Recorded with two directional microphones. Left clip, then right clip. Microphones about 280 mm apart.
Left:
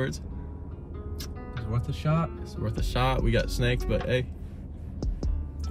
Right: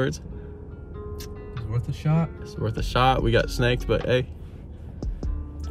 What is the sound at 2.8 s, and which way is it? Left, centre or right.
Speech, right.